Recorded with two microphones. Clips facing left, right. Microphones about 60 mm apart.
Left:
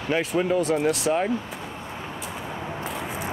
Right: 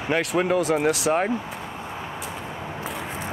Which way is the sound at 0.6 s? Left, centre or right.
Centre.